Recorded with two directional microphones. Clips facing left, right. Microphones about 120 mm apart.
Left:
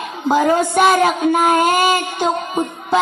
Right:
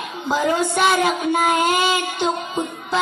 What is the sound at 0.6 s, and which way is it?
Child singing, 45° left (ahead or behind).